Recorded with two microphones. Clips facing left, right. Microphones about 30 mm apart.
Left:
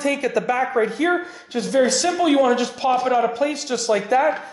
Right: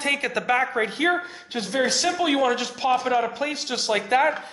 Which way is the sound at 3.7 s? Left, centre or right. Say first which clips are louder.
Left 2 dB; right.